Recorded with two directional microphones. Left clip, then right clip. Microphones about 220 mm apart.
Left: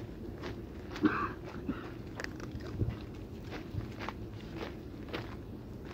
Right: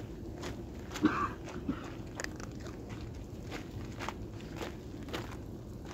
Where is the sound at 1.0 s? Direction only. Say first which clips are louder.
Even; 35° right (ahead or behind).